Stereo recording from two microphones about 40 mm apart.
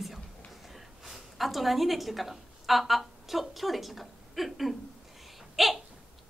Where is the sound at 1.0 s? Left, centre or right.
Centre.